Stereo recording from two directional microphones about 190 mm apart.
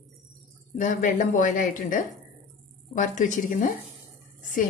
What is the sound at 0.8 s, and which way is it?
A woman's voice, 40° left (ahead or behind).